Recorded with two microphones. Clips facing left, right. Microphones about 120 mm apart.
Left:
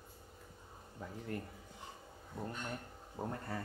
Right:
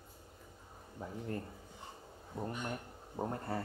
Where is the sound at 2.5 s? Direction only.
10° right (ahead or behind).